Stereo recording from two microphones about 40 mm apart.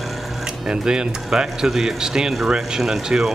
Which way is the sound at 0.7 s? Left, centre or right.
Centre.